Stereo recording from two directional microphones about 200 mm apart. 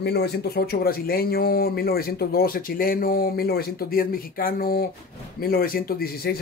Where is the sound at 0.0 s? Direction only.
55° left (ahead or behind).